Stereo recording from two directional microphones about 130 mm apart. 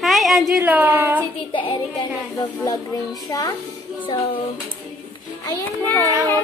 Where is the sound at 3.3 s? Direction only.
30° left (ahead or behind).